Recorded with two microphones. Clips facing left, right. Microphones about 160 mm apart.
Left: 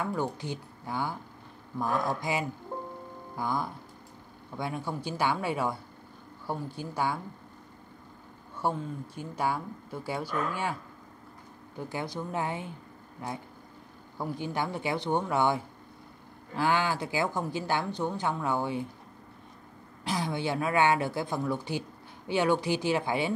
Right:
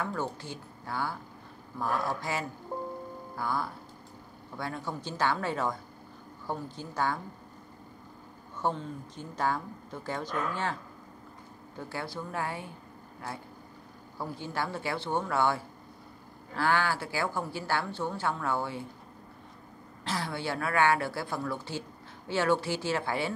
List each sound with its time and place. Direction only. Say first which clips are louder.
0.0 s a woman's voice: left 2 dB; 15° left (ahead or behind)
8.5 s a woman's voice: left 1 dB; 10° left (ahead or behind)
11.9 s a woman's voice: left 3 dB; 15° left (ahead or behind)
20.1 s a woman's voice: left 3 dB; 15° left (ahead or behind)